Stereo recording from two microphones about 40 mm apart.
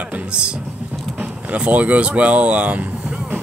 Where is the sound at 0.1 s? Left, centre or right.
Right.